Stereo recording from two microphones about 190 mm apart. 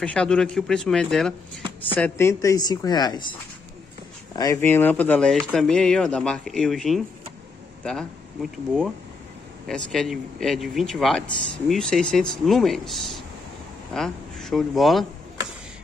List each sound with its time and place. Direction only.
0.0 s speech: 5° left (ahead or behind); by 3.3 s 25° left (ahead or behind)
4.4 s speech: 15° left (ahead or behind)